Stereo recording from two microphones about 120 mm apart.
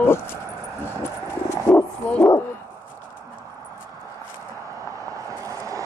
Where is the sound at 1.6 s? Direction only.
15° left (ahead or behind).